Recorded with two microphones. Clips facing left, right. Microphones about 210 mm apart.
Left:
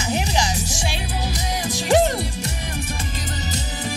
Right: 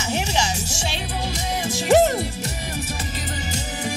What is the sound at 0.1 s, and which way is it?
Music, 15° left (ahead or behind).